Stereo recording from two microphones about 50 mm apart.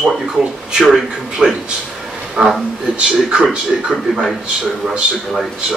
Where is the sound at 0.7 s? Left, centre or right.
Centre.